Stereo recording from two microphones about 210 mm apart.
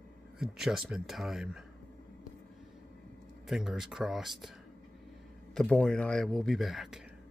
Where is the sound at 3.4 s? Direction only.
Centre (ahead or behind).